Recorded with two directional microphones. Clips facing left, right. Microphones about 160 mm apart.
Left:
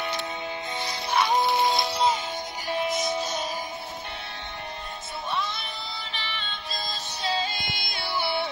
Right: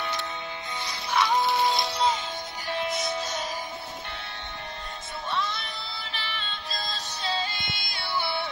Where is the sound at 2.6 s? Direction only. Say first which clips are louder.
Left 2 dB; 15° left (ahead or behind).